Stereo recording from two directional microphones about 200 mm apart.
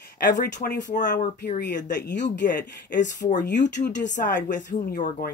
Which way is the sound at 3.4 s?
60° left (ahead or behind).